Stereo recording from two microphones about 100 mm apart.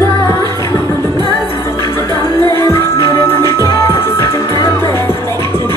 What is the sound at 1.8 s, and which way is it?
Music, 30° left (ahead or behind).